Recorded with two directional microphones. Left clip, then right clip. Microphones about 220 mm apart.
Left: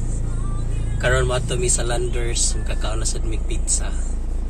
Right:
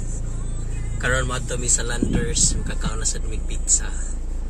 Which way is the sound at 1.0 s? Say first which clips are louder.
Left 3 dB; 20° right (ahead or behind).